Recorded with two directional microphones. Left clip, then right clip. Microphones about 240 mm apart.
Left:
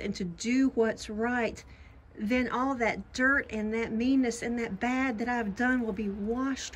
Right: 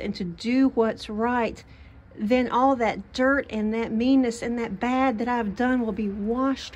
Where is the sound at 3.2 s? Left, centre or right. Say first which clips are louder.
Right 3 dB; left.